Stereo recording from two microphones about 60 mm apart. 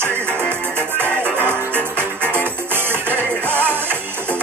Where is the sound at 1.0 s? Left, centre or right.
Right.